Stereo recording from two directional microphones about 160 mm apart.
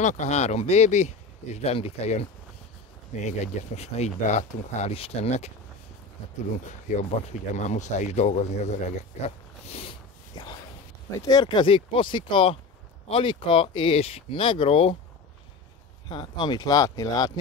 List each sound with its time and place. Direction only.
0.0 s speech: 45° left (ahead or behind)
6.9 s speech: 50° left (ahead or behind); by 15.0 s 35° left (ahead or behind)
16.1 s speech: 25° left (ahead or behind)